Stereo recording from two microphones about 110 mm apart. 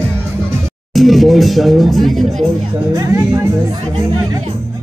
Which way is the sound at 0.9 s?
Centre (ahead or behind).